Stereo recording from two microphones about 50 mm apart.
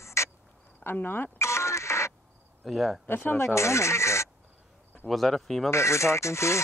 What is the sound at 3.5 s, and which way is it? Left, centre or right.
Speech, left.